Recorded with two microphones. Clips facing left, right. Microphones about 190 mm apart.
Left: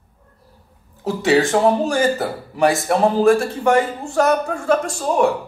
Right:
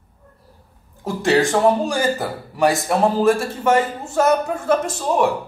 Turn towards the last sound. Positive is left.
turn(degrees=0)  # may be behind; listen again after turning